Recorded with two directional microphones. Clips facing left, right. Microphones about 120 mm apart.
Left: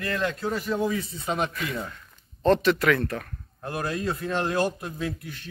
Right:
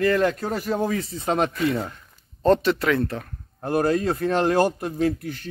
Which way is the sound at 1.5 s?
30° right (ahead or behind).